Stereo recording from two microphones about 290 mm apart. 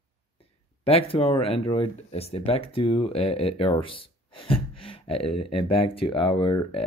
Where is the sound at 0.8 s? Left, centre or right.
Centre.